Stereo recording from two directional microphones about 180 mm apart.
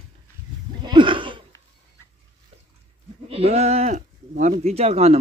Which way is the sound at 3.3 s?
35° right (ahead or behind).